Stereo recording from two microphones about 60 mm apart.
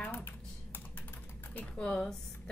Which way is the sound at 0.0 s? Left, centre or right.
Left.